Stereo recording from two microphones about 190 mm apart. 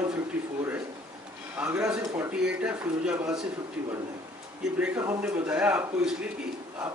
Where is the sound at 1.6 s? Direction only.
5° right (ahead or behind).